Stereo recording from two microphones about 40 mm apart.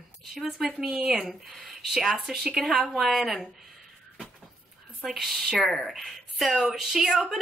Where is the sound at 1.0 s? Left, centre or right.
Centre.